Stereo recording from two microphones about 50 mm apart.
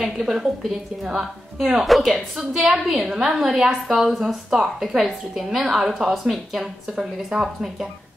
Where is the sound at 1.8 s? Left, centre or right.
Centre.